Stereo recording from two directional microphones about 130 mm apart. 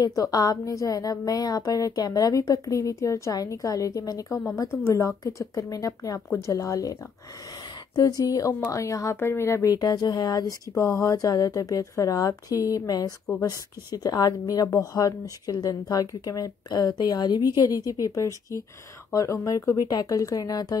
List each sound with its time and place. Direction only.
0.0 s speech: 30° left (ahead or behind)